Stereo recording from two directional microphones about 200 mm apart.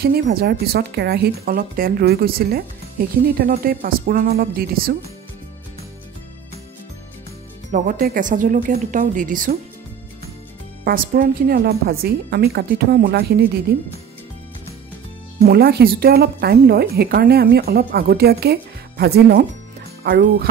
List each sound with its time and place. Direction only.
0.0 s speech: 50° right (ahead or behind)
7.7 s speech: 40° right (ahead or behind)
10.8 s speech: 50° right (ahead or behind)
15.4 s speech: 50° right (ahead or behind)